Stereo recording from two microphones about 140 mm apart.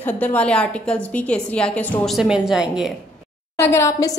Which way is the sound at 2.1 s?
5° right (ahead or behind).